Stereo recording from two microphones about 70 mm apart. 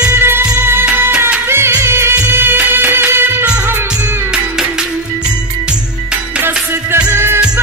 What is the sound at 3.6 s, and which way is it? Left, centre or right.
Music, right.